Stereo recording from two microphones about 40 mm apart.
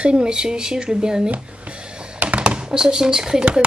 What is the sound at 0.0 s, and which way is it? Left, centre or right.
Speech, right.